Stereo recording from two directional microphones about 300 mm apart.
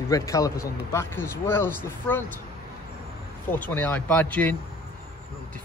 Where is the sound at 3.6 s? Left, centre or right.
Centre.